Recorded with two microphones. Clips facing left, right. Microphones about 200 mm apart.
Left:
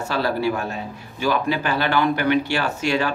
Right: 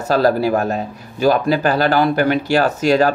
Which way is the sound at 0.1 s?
40° right (ahead or behind).